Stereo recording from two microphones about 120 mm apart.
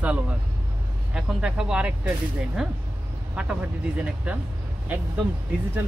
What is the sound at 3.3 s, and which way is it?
Speech, 10° right (ahead or behind).